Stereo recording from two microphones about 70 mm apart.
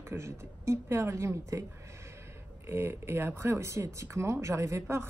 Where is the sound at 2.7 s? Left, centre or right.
Right.